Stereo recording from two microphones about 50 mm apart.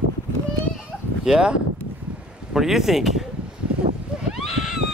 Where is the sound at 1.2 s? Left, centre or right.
Centre.